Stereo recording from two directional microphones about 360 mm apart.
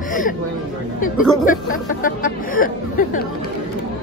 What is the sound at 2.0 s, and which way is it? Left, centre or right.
Speech, left.